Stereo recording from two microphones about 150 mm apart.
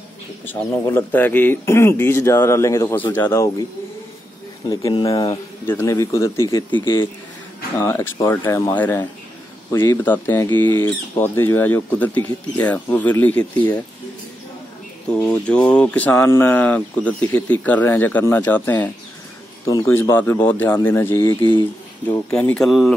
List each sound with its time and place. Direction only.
0.5 s speech: 15° left (ahead or behind)
4.6 s speech: 25° left (ahead or behind)
15.2 s speech: 5° left (ahead or behind)